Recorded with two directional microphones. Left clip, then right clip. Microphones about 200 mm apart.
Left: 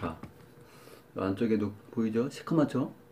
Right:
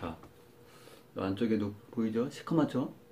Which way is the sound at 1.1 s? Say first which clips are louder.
Left 3 dB; 25° left (ahead or behind).